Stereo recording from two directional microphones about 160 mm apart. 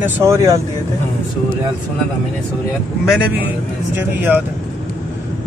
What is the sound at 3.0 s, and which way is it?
Speech, 5° right (ahead or behind).